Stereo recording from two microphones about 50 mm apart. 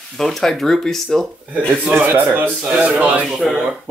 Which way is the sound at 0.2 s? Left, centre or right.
Centre.